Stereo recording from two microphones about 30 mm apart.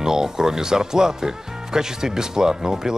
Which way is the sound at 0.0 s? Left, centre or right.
Centre.